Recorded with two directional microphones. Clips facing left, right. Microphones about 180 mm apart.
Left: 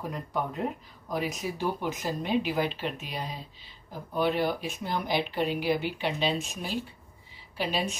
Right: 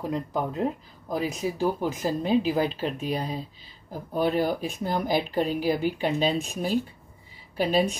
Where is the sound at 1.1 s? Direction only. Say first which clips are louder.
Right 4 dB; 30° right (ahead or behind).